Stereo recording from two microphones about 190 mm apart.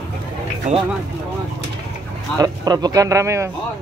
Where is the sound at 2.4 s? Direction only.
20° right (ahead or behind).